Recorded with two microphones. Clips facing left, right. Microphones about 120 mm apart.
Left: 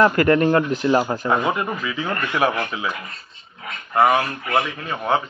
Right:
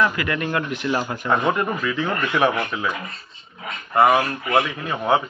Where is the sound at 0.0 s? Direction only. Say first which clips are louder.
Left 7 dB; 45° left (ahead or behind).